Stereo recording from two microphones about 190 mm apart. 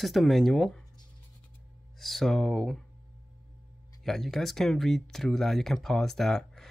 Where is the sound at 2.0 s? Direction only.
Centre (ahead or behind).